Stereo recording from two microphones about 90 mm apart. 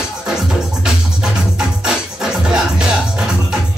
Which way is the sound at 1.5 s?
10° right (ahead or behind).